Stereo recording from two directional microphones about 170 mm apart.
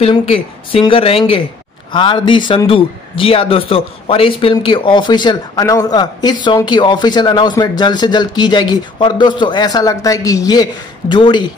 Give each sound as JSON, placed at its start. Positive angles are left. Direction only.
{"t": 0.3, "sound": "a man's voice", "side_deg": 30}